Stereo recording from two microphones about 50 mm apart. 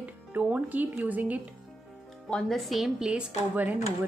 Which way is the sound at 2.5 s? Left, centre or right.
Centre.